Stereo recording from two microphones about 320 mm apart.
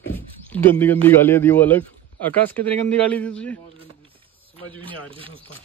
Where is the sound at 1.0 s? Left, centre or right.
Centre.